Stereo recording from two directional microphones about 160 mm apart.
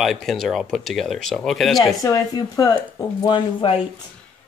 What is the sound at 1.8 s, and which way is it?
Speech, 20° left (ahead or behind).